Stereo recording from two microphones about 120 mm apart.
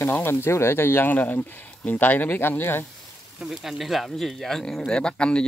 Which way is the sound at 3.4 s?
Centre (ahead or behind).